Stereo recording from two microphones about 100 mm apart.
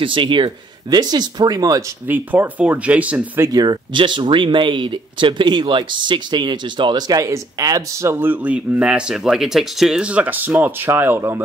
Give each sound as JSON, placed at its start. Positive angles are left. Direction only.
{"t": 0.0, "sound": "speech", "side_deg": -55}
{"t": 2.0, "sound": "speech", "side_deg": -20}
{"t": 3.5, "sound": "speech", "side_deg": -50}